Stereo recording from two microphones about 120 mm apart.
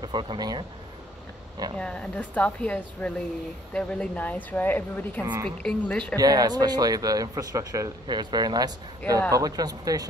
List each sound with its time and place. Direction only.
0.0 s speech: 40° right (ahead or behind)
1.8 s a woman's voice: 10° left (ahead or behind)
5.2 s speech: 35° right (ahead or behind)
5.6 s a woman's voice: 5° left (ahead or behind)
6.1 s speech: 35° right (ahead or behind)